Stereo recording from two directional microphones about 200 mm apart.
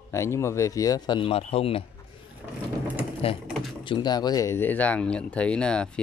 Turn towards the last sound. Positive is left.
turn(degrees=5)  # may be behind; listen again after turning